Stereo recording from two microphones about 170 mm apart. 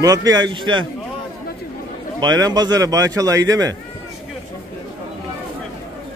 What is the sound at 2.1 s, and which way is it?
Speech, 25° right (ahead or behind).